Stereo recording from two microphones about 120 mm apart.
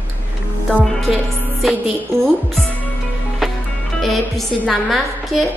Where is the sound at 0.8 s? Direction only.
Centre (ahead or behind).